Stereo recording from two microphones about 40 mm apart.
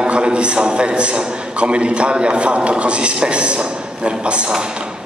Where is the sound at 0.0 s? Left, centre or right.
Right.